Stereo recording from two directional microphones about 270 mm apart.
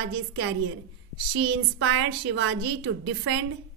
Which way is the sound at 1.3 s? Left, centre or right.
Right.